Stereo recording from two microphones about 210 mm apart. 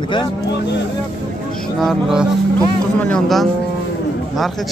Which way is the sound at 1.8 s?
Centre (ahead or behind).